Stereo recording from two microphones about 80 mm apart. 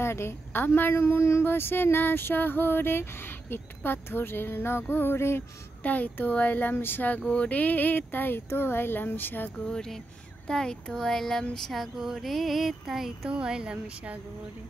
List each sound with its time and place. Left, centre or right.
0.0 s a woman's voice: left
5.8 s a woman's voice: left
9.7 s speech: centre
11.5 s a sound: centre